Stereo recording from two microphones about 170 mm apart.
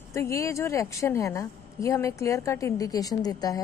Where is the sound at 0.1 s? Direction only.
15° left (ahead or behind).